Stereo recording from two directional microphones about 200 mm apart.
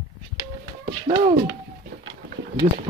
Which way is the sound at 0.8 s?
30° right (ahead or behind).